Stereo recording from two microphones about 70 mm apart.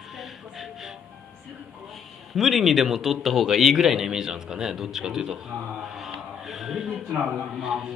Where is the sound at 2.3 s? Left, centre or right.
Centre.